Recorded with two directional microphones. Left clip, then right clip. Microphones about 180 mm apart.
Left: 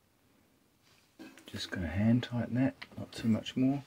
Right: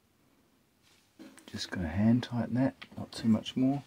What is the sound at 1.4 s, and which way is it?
Speech, 30° right (ahead or behind).